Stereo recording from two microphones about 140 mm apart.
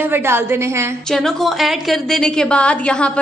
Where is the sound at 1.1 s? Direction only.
Centre (ahead or behind).